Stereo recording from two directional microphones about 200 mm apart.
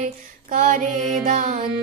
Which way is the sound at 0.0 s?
40° right (ahead or behind).